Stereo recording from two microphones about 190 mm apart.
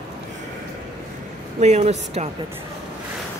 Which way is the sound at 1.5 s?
35° right (ahead or behind).